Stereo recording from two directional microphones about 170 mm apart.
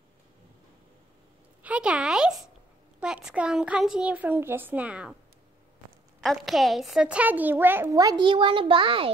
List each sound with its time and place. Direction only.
1.6 s a child's voice: 5° right (ahead or behind)
6.2 s a child's voice: centre (ahead or behind); by 9.1 s 30° right (ahead or behind)